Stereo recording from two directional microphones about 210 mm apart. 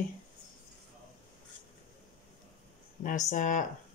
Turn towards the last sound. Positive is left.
turn(degrees=35)  # may be behind; listen again after turning